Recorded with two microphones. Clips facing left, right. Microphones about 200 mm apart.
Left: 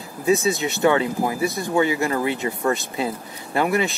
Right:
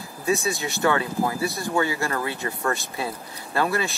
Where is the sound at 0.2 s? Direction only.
20° left (ahead or behind).